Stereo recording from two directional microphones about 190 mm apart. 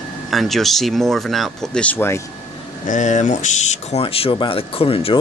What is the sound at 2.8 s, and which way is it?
Speech, 40° left (ahead or behind).